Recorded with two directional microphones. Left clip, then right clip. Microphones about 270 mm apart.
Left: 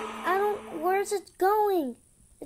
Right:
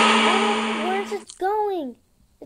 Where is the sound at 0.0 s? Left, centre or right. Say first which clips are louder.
Right 10 dB; right.